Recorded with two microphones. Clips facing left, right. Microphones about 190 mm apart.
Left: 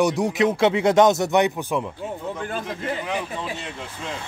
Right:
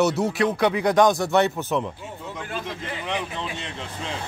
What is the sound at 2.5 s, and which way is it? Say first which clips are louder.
Speech: left 1 dB; 45° left (ahead or behind).